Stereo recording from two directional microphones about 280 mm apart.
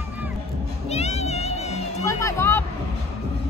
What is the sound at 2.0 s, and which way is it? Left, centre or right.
Music, centre.